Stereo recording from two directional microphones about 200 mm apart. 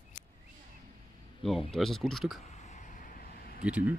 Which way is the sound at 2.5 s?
35° left (ahead or behind).